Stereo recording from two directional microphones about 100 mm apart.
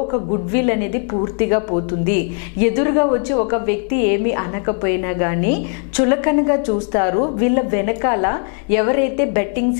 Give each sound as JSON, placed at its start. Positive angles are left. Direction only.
{"t": 0.1, "sound": "a woman's voice", "side_deg": 15}